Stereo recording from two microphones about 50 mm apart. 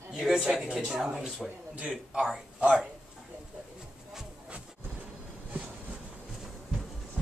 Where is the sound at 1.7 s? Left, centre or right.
Centre.